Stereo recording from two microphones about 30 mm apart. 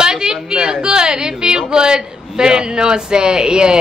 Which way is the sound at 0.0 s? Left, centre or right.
Right.